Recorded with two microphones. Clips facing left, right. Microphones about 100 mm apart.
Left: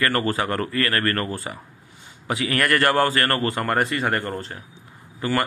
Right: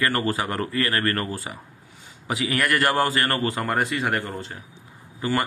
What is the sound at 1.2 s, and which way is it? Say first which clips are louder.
Speech: left 2 dB; 30° left (ahead or behind).